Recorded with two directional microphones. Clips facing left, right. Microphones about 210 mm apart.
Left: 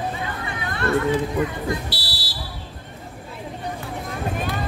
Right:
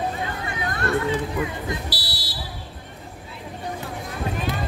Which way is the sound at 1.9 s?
25° left (ahead or behind).